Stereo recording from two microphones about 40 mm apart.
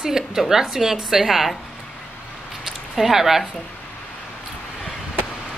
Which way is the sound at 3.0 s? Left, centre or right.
Centre.